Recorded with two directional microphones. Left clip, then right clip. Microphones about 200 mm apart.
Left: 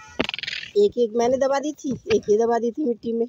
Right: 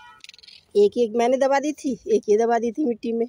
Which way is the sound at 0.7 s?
Centre (ahead or behind).